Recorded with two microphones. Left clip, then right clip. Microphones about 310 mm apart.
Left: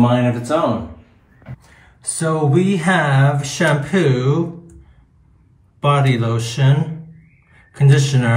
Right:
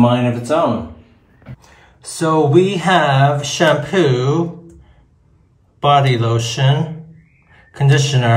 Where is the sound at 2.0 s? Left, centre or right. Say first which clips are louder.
Right 5 dB; right.